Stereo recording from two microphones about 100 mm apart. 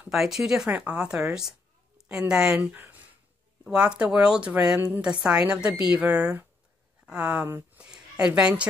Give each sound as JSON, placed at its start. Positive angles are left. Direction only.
{"t": 0.1, "sound": "speech", "side_deg": -5}
{"t": 2.6, "sound": "speech", "side_deg": -20}
{"t": 7.4, "sound": "speech", "side_deg": -20}
{"t": 7.8, "sound": "a sound", "side_deg": -10}
{"t": 8.4, "sound": "speech", "side_deg": -10}